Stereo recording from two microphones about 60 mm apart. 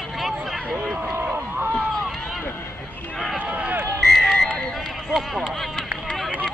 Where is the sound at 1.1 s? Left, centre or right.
Right.